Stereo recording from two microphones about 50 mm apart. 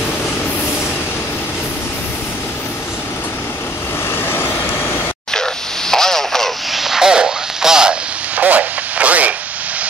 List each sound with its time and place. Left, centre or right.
4.3 s vehicle: left
5.3 s a sound: centre
6.7 s radio: centre
8.4 s radio: right